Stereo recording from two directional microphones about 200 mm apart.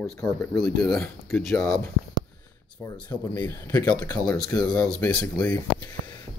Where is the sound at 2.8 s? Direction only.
20° left (ahead or behind).